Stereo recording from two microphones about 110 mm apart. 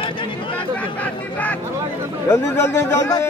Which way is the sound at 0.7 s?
15° left (ahead or behind).